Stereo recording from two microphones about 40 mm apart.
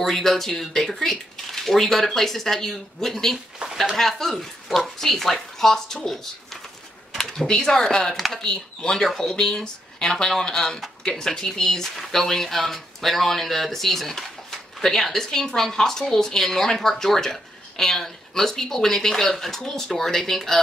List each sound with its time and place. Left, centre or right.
0.0 s a woman's voice: centre
7.1 s typing: centre
7.4 s a woman's voice: centre